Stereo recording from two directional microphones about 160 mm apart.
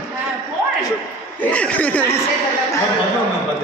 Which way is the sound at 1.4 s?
10° left (ahead or behind).